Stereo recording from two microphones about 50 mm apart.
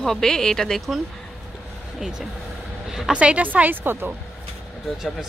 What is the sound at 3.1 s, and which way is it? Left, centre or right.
Speech, right.